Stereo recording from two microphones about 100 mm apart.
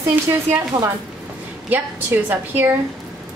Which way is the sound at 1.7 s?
20° right (ahead or behind).